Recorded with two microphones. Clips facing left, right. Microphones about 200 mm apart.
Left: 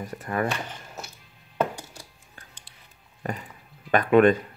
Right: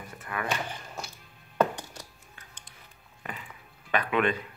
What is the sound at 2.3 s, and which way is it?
Music, 35° left (ahead or behind).